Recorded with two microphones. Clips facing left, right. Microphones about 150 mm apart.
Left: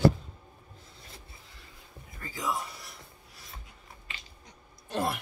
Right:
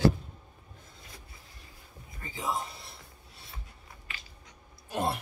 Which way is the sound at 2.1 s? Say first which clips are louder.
Even; 20° right (ahead or behind).